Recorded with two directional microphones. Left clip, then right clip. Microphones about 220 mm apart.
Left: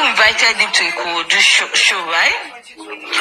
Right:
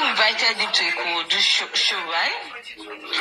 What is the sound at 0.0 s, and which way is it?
Speech, 45° left (ahead or behind).